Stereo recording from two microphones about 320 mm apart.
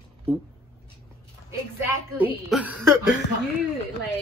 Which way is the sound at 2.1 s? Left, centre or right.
Centre.